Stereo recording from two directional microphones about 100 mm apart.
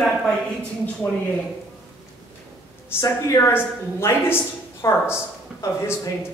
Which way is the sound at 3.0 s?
30° left (ahead or behind).